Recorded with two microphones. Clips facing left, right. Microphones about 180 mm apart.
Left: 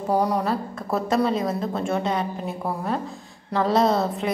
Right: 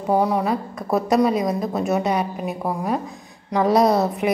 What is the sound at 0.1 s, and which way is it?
A woman's voice, 10° right (ahead or behind).